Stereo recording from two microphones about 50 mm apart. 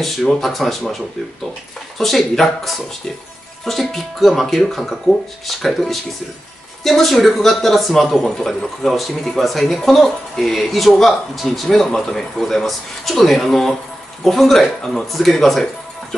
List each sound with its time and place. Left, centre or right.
0.3 s speech: centre
2.0 s speech: centre